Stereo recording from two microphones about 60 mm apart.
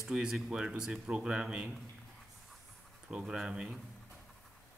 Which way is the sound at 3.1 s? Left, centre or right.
Centre.